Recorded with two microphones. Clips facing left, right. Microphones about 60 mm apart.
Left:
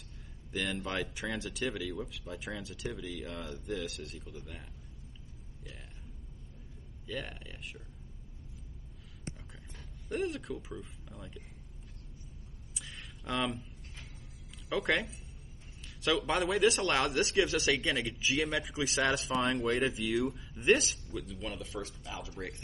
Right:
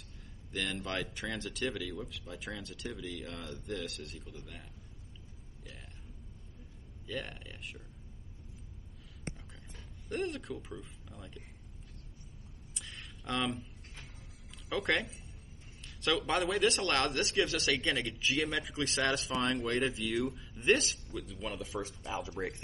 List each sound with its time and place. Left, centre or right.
0.5 s speech: centre
7.1 s speech: centre
10.0 s speech: centre
12.7 s a sound: centre
14.7 s speech: centre
21.8 s speech: right